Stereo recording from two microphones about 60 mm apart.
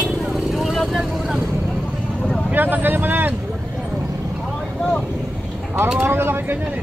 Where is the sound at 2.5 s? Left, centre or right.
Right.